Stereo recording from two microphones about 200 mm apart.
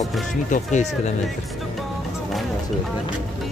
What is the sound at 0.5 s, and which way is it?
Speech, 35° left (ahead or behind).